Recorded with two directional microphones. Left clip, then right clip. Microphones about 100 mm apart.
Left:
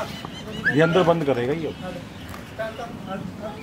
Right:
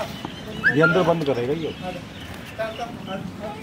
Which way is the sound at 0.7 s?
50° left (ahead or behind).